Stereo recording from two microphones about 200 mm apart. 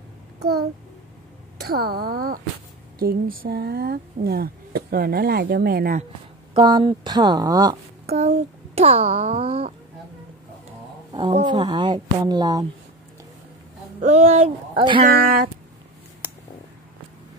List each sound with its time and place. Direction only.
0.4 s a child's voice: 50° right (ahead or behind)
6.6 s a woman's voice: 20° right (ahead or behind)
8.1 s a child's voice: 30° right (ahead or behind)
11.4 s a woman's voice: 20° right (ahead or behind)
14.0 s a child's voice: 35° right (ahead or behind)
15.0 s speech: 45° right (ahead or behind)